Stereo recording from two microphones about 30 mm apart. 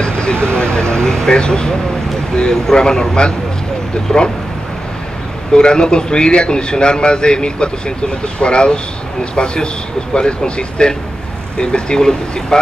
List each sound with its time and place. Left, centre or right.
0.0 s speech: left
5.5 s speech: left